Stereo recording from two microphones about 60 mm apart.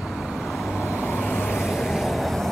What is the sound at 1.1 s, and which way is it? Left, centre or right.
Vehicle, left.